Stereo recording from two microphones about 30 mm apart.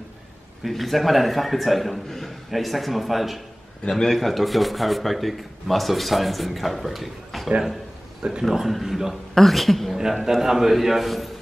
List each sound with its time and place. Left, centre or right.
0.7 s a man's voice: centre
3.9 s a man's voice: centre
8.2 s speech: right
8.5 s a man's voice: centre
9.3 s a woman's voice: centre
10.4 s a man's voice: centre